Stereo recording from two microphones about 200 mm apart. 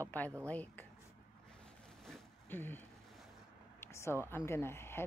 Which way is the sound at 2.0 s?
5° left (ahead or behind).